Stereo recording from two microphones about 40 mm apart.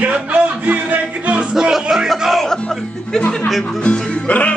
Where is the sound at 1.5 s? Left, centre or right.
Centre.